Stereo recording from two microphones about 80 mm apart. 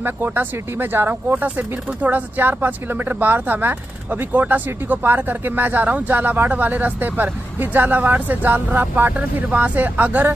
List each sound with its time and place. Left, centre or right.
0.0 s speech: right